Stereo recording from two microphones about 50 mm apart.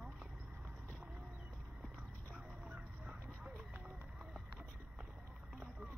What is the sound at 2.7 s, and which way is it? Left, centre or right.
Fowl, right.